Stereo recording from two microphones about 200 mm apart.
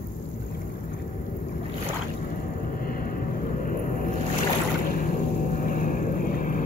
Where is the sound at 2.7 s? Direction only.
45° left (ahead or behind).